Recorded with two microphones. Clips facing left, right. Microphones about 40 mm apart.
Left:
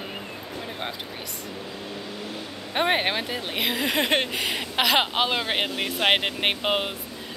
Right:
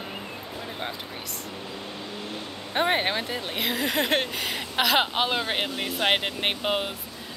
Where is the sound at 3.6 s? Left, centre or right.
Centre.